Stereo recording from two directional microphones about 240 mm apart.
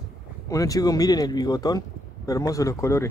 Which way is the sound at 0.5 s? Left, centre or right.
Centre.